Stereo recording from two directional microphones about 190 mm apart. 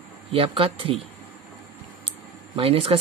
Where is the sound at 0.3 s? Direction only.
30° right (ahead or behind).